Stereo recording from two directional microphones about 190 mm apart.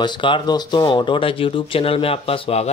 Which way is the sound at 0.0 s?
25° left (ahead or behind).